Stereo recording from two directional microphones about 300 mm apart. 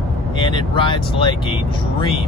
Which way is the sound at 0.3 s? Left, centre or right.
Centre.